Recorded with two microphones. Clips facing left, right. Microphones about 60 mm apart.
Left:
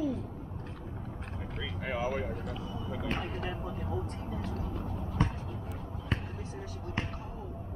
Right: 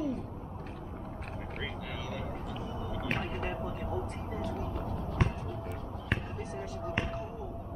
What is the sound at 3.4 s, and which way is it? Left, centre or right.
Speech, right.